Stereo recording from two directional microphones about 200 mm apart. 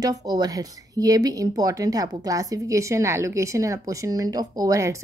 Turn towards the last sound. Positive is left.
turn(degrees=-15)  # may be behind; listen again after turning